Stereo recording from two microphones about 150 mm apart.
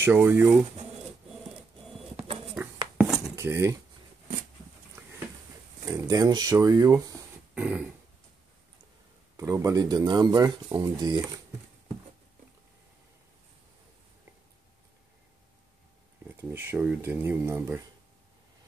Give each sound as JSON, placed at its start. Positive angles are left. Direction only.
{"t": 0.0, "sound": "speech", "side_deg": -15}
{"t": 3.0, "sound": "dishes", "side_deg": -5}
{"t": 3.3, "sound": "speech", "side_deg": -15}
{"t": 5.9, "sound": "speech", "side_deg": -25}
{"t": 7.5, "sound": "a sound", "side_deg": -10}
{"t": 9.4, "sound": "speech", "side_deg": -20}
{"t": 16.3, "sound": "speech", "side_deg": -15}